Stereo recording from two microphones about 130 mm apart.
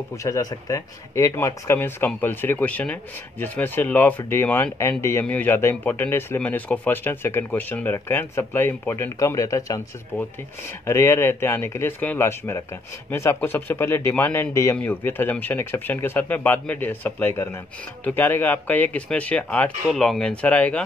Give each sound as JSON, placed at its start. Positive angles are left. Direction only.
{"t": 0.2, "sound": "speech", "side_deg": 25}
{"t": 10.9, "sound": "speech", "side_deg": 20}